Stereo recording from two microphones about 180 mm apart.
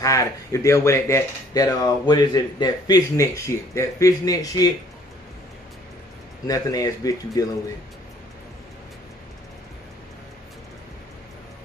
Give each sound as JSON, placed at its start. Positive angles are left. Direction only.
{"t": 0.0, "sound": "speech", "side_deg": 20}
{"t": 6.4, "sound": "speech", "side_deg": 20}